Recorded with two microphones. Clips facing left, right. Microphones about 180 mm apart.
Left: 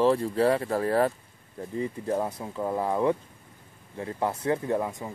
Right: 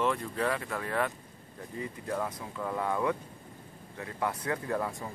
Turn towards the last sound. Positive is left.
turn(degrees=20)  # may be behind; listen again after turning